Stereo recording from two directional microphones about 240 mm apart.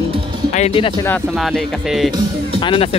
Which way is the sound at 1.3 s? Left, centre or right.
Centre.